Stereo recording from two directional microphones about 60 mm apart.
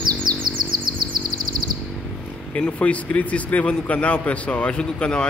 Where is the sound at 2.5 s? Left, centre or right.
Left.